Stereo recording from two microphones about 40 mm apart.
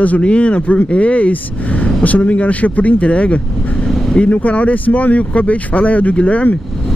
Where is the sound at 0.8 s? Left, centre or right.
Left.